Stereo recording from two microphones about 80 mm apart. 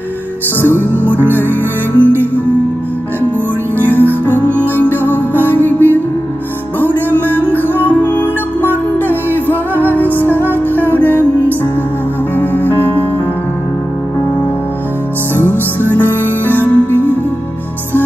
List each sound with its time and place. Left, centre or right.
0.6 s music: left
3.7 s music: left
15.3 s music: left